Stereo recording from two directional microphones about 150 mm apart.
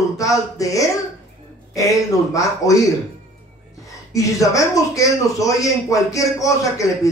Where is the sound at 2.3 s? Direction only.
20° left (ahead or behind).